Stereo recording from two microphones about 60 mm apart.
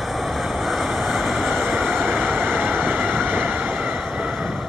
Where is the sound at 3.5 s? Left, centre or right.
Right.